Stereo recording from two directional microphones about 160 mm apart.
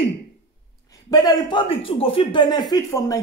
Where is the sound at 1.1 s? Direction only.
25° left (ahead or behind).